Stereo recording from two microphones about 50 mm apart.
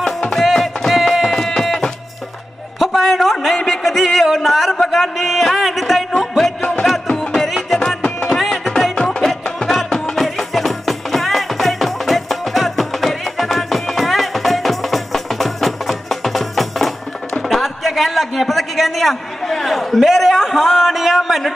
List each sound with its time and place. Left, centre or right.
0.0 s music: centre
0.5 s music: centre
2.8 s a sound: centre
4.8 s music: centre
8.0 s music: centre
8.4 s music: centre
10.1 s music: centre